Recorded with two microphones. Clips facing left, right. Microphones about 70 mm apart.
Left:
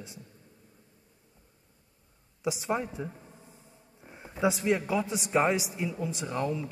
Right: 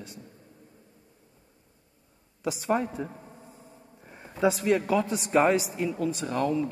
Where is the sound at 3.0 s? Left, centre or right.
Right.